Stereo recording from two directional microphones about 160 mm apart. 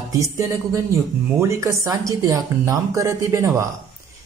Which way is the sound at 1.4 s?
20° right (ahead or behind).